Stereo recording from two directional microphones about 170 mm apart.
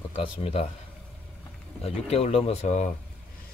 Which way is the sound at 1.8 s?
40° left (ahead or behind).